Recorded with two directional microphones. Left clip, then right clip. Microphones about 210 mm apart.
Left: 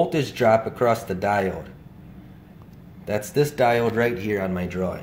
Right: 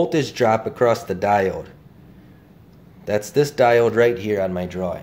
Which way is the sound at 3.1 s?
45° right (ahead or behind).